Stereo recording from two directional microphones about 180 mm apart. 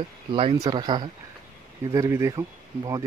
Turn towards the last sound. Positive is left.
turn(degrees=-20)  # may be behind; listen again after turning